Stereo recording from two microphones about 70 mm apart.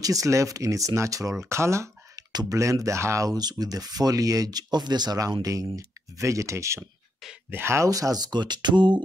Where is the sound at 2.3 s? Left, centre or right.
Right.